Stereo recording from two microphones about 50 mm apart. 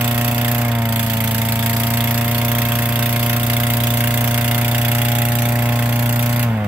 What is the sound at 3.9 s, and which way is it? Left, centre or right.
Engine, right.